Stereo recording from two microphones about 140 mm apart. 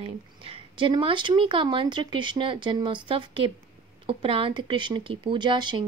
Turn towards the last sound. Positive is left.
turn(degrees=-35)  # may be behind; listen again after turning